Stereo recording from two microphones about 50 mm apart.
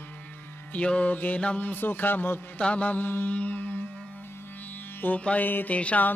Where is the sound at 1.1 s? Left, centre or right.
Left.